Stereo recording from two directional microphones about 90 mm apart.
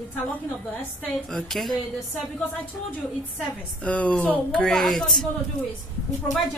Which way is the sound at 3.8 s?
15° left (ahead or behind).